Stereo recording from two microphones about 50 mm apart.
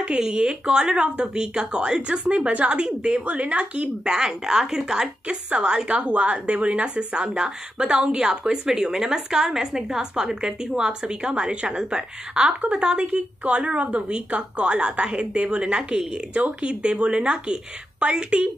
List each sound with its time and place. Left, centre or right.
0.2 s a woman's voice: centre